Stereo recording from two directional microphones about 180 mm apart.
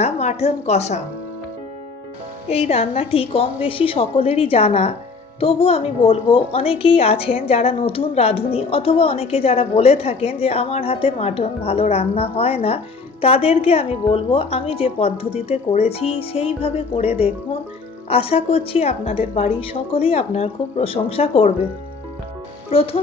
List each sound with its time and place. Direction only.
0.0 s a woman's voice: 40° left (ahead or behind)
2.5 s a woman's voice: 35° left (ahead or behind)
22.7 s speech: 30° left (ahead or behind)